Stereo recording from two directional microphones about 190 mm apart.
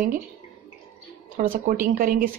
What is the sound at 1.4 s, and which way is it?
Speech, 45° right (ahead or behind).